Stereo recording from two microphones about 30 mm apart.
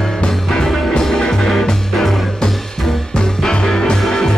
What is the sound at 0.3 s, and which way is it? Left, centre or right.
Music, centre.